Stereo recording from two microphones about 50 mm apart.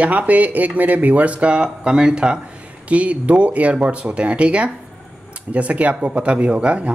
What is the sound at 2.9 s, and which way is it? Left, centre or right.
Speech, right.